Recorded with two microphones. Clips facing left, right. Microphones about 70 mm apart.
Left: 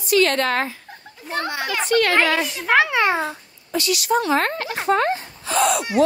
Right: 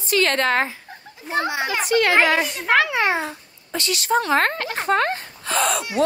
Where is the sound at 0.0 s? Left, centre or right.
Right.